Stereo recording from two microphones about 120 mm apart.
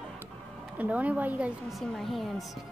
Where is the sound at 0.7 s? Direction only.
10° right (ahead or behind).